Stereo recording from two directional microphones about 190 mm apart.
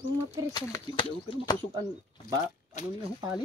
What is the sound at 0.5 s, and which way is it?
Speech, 20° left (ahead or behind).